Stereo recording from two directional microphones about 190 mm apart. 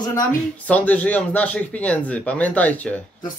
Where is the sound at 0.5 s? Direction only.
10° left (ahead or behind).